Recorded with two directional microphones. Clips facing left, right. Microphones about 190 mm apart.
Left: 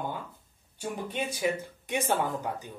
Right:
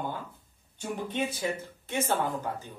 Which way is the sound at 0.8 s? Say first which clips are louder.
Right 2 dB; 10° left (ahead or behind).